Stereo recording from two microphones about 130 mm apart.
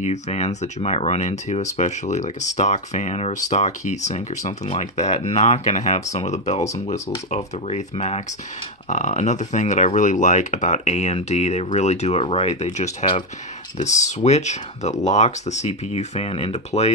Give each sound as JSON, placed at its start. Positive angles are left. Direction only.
{"t": 0.0, "sound": "speech", "side_deg": 60}
{"t": 8.8, "sound": "speech", "side_deg": 70}